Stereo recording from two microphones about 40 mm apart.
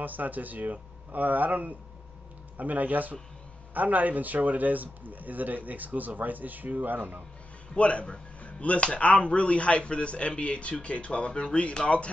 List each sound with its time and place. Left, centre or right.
0.0 s a man's voice: right
7.7 s speech: left